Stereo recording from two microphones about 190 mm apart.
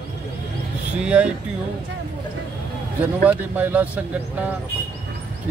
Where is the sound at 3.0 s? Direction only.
10° right (ahead or behind).